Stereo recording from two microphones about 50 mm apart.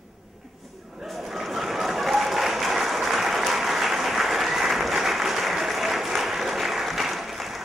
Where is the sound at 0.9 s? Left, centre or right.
Centre.